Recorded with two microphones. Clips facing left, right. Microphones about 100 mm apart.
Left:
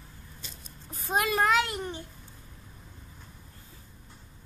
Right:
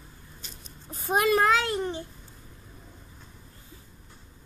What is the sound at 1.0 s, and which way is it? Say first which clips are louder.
Speech: right 4 dB; 25° right (ahead or behind).